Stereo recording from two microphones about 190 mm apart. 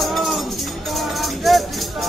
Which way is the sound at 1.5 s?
Centre (ahead or behind).